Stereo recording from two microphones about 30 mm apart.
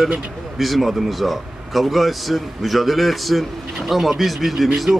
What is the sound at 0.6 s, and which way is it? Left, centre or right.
A man's voice, centre.